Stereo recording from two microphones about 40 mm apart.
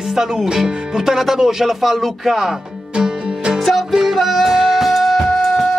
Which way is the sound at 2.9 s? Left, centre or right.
Right.